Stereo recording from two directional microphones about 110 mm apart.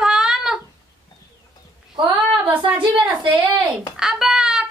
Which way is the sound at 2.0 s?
40° right (ahead or behind).